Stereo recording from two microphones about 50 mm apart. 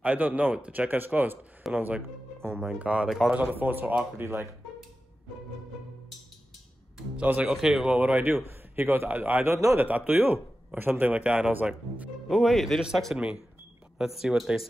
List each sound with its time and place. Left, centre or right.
0.0 s a man's voice: right
2.5 s speech: centre
2.8 s speech: right
3.1 s speech: centre
3.3 s a man's voice: right
4.2 s speech: right
7.2 s speech: right
7.4 s speech: centre
7.8 s speech: right
8.2 s a man's voice: right
8.5 s a man's voice: right
9.1 s a man's voice: right
12.3 s speech: centre
13.1 s speech: centre